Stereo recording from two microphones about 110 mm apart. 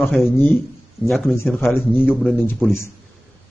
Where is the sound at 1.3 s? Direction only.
20° left (ahead or behind).